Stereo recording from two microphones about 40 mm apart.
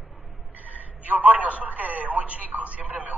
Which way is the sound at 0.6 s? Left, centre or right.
Right.